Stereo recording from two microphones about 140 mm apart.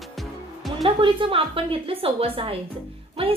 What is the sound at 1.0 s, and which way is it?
A woman's voice, 40° right (ahead or behind).